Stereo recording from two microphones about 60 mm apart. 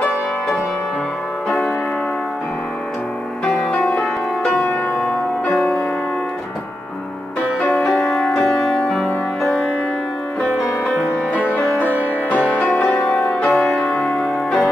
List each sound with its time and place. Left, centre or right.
3.5 s music: centre
3.9 s music: centre
5.5 s music: centre
7.6 s music: centre
11.8 s music: left
13.5 s music: centre